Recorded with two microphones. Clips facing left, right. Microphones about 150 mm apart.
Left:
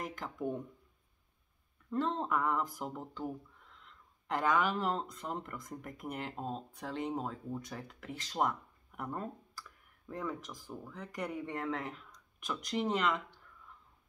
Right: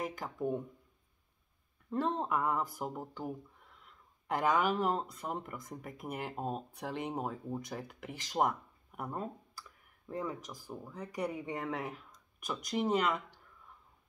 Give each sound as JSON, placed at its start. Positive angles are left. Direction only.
{"t": 0.0, "sound": "speech", "side_deg": -10}
{"t": 1.9, "sound": "speech", "side_deg": -15}